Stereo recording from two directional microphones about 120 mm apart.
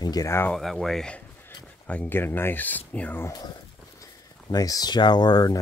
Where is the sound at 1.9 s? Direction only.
15° left (ahead or behind).